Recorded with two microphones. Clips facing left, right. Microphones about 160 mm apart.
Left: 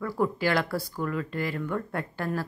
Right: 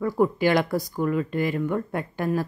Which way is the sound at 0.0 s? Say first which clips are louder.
Right 5 dB; 20° right (ahead or behind).